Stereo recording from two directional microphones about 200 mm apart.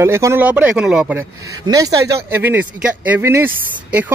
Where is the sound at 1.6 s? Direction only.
15° right (ahead or behind).